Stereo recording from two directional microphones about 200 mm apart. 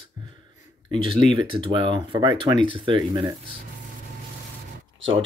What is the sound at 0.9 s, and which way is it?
Speech, 25° right (ahead or behind).